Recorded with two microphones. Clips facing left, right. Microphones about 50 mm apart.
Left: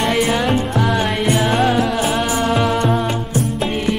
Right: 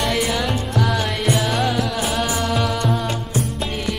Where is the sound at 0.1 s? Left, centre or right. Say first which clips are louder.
Left 5 dB; left.